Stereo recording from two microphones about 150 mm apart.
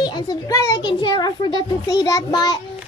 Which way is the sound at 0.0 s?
25° left (ahead or behind).